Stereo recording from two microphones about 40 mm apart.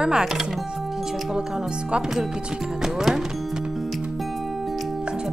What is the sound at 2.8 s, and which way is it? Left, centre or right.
Music, centre.